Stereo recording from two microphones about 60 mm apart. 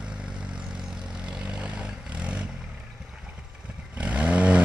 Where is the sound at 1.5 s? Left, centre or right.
Centre.